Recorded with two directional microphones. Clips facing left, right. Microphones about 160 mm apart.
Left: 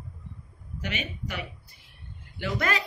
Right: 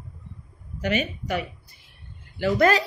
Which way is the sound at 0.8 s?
45° right (ahead or behind).